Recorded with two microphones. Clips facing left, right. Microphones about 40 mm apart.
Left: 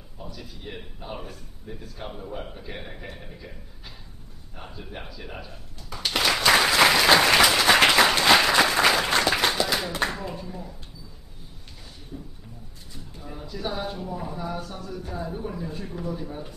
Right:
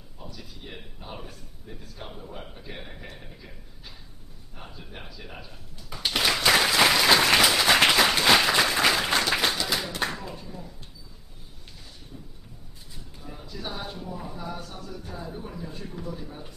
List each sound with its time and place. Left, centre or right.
0.4 s speech: centre
4.6 s speech: centre
6.1 s applause: centre
9.8 s speech: centre
13.2 s speech: centre